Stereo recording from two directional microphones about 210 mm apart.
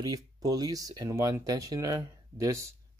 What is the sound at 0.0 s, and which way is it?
Speech, 20° right (ahead or behind).